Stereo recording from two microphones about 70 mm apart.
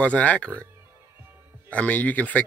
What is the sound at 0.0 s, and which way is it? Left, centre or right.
Speech, centre.